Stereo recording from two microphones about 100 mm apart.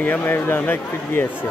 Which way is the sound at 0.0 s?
20° left (ahead or behind).